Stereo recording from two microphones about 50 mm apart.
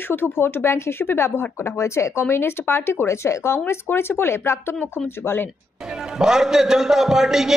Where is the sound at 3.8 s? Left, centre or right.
Left.